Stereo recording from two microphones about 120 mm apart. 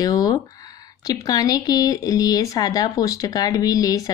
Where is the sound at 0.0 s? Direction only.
30° left (ahead or behind).